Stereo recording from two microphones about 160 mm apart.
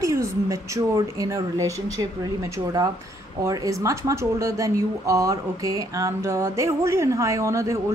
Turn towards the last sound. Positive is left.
turn(degrees=-20)  # may be behind; listen again after turning